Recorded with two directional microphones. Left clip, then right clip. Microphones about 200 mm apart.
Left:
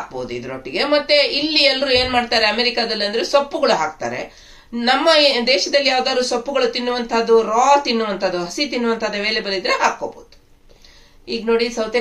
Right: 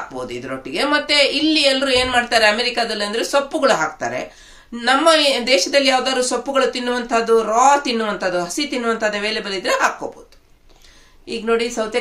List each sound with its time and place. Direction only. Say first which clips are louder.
0.7 s speech: left 2 dB; 55° right (ahead or behind)
11.2 s a woman's voice: left 1 dB; 55° right (ahead or behind)